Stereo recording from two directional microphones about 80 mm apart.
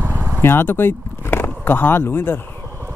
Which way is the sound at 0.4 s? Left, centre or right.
Left.